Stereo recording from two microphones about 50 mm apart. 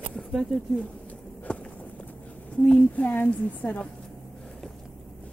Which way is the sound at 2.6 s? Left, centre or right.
Left.